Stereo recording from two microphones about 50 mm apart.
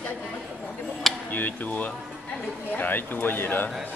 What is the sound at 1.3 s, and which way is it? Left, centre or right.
Speech, left.